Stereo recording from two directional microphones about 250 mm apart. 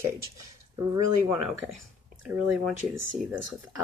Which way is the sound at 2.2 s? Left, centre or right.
Centre.